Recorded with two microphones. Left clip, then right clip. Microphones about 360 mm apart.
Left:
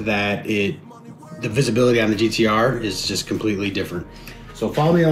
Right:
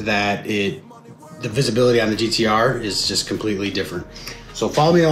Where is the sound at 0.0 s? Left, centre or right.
Centre.